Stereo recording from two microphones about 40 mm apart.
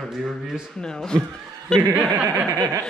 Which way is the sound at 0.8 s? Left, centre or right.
Centre.